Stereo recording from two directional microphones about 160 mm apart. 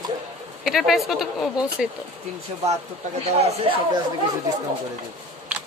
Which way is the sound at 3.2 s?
40° right (ahead or behind).